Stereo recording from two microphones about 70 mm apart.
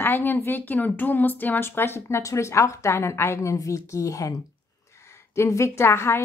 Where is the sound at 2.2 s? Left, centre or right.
Left.